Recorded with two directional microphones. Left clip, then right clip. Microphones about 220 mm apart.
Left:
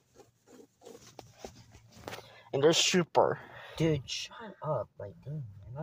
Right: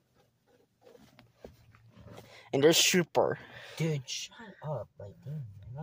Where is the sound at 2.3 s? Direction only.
20° right (ahead or behind).